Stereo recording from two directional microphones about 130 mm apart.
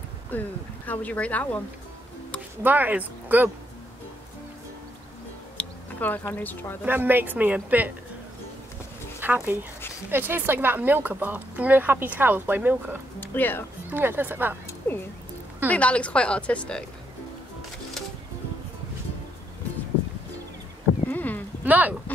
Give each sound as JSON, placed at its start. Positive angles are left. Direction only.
{"t": 0.3, "sound": "speech", "side_deg": 15}
{"t": 2.6, "sound": "speech", "side_deg": -15}
{"t": 5.6, "sound": "music", "side_deg": 10}
{"t": 6.3, "sound": "speech", "side_deg": 15}
{"t": 6.8, "sound": "speech", "side_deg": -15}
{"t": 9.2, "sound": "speech", "side_deg": -15}
{"t": 13.2, "sound": "speech", "side_deg": 15}
{"t": 13.8, "sound": "speech", "side_deg": -15}
{"t": 14.8, "sound": "speech", "side_deg": 15}
{"t": 21.1, "sound": "horse", "side_deg": 15}
{"t": 21.6, "sound": "a sound", "side_deg": -15}